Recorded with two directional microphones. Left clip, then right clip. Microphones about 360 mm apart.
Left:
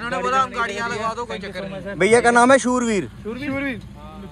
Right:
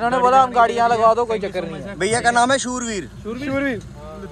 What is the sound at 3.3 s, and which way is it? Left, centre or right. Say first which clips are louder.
Speech: right 4 dB; right.